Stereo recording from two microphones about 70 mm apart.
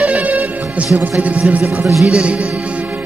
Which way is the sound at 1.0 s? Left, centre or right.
Right.